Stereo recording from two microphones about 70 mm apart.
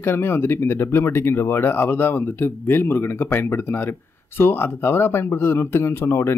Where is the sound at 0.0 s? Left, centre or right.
Left.